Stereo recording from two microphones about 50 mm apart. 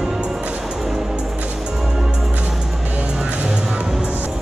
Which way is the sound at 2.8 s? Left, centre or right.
Right.